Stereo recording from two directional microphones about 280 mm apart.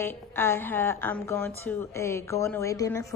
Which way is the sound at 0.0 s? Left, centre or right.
Centre.